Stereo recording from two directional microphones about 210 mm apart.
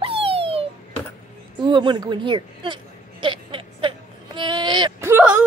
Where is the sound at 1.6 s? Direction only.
20° right (ahead or behind).